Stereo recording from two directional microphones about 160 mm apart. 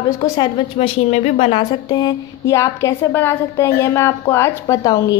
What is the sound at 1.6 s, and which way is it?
A woman's voice, 25° left (ahead or behind).